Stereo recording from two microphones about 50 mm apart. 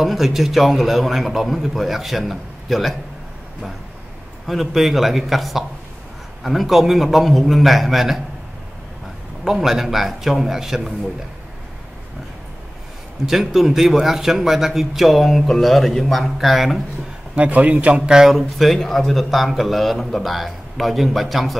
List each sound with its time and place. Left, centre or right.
0.0 s a man's voice: centre
4.5 s a man's voice: centre
9.4 s a man's voice: centre
13.2 s a man's voice: centre
17.4 s speech: right
18.3 s a man's voice: centre